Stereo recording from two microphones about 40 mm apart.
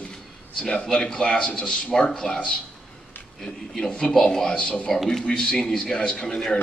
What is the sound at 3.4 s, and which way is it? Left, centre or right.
A man's voice, centre.